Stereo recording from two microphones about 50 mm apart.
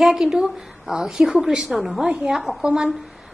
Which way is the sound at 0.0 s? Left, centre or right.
Centre.